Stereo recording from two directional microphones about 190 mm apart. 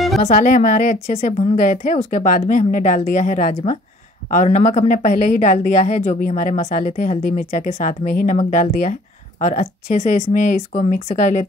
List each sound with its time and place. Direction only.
0.2 s a woman's voice: 40° left (ahead or behind)